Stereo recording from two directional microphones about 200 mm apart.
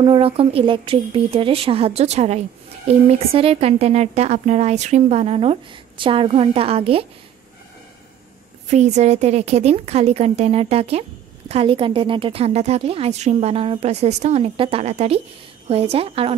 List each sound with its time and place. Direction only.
0.0 s a woman's voice: 30° right (ahead or behind)
8.6 s a woman's voice: 35° right (ahead or behind)